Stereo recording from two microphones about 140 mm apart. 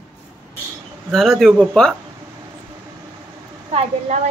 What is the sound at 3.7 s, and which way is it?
Speech, 45° right (ahead or behind).